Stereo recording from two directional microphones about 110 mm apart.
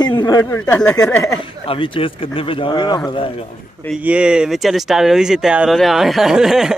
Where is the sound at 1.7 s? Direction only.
55° left (ahead or behind).